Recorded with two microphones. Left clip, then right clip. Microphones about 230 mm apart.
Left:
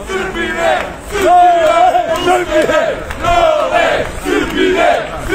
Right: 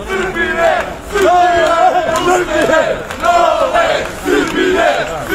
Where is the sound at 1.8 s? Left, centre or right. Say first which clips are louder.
Even; left.